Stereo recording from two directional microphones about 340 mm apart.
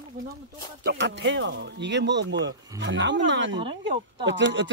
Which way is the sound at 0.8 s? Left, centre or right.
Right.